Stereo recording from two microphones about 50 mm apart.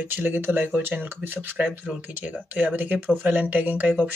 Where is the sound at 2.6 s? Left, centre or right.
Right.